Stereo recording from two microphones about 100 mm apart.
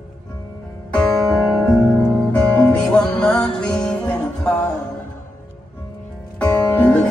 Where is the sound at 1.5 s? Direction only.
5° left (ahead or behind).